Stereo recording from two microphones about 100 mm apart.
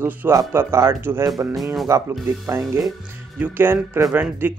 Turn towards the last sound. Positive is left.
turn(degrees=-20)  # may be behind; listen again after turning